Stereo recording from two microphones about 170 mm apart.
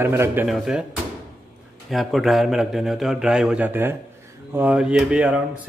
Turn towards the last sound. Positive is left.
turn(degrees=-5)  # may be behind; listen again after turning